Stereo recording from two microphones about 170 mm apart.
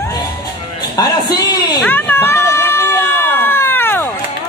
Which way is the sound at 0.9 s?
25° left (ahead or behind).